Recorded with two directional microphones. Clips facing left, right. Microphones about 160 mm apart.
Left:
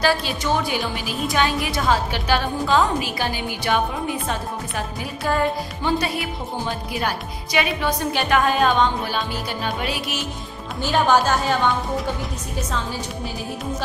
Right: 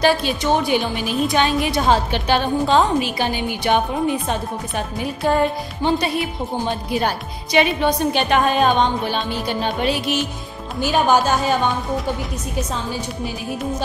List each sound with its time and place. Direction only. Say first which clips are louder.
0.0 s a woman's voice: right 4 dB; 20° right (ahead or behind)
5.3 s a woman's voice: right 1 dB; 25° right (ahead or behind)
10.8 s speech: right 1 dB; 15° right (ahead or behind)